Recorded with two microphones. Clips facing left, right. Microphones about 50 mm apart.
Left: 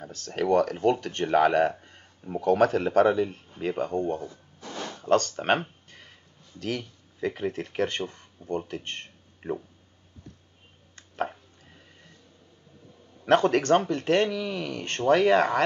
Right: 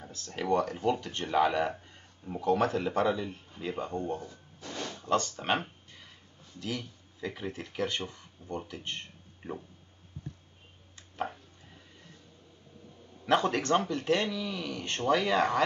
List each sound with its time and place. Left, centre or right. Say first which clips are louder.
0.0 s speech: left 7 dB; left
3.1 s speech: left 7 dB; left
6.6 s speech: left 5 dB; left
13.3 s speech: left 6 dB; left